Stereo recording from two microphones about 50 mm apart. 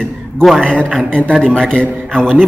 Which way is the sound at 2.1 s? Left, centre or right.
Centre.